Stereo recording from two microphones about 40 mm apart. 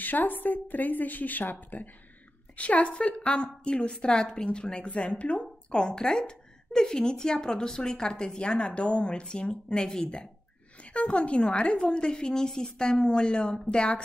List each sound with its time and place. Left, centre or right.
0.0 s speech: left
2.5 s a woman's voice: left
4.8 s a woman's voice: left
5.4 s a woman's voice: left
10.9 s a woman's voice: left